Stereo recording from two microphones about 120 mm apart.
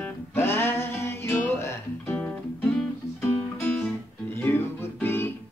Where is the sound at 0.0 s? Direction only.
20° left (ahead or behind).